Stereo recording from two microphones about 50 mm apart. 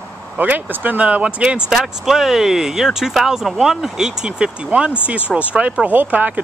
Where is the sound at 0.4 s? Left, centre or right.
Right.